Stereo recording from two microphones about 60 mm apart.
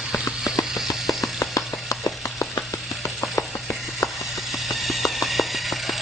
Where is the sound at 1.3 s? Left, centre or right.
Left.